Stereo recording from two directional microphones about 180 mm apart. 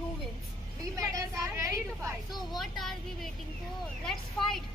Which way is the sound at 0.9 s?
15° right (ahead or behind).